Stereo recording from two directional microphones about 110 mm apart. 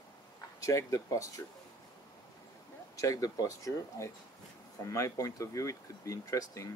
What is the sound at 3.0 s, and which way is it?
Speech, 35° left (ahead or behind).